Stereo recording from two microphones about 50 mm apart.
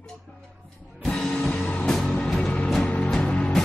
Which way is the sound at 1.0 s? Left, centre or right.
Centre.